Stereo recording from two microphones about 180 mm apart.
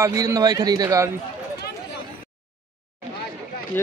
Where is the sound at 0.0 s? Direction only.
20° right (ahead or behind).